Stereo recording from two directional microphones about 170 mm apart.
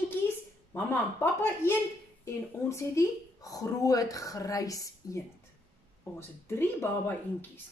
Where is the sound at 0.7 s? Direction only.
10° left (ahead or behind).